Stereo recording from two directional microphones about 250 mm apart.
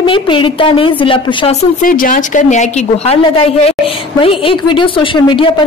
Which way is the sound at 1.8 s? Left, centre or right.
Left.